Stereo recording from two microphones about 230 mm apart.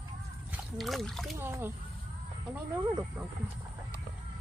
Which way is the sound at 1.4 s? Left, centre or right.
Centre.